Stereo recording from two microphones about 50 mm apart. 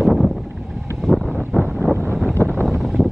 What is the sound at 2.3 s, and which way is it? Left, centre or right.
Wind noise, left.